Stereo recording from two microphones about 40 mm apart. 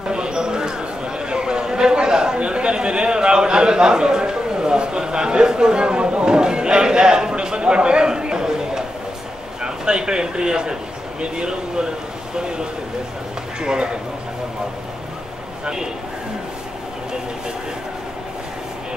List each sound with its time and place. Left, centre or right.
0.1 s a sound: right
9.6 s a man's voice: right
15.6 s speech: centre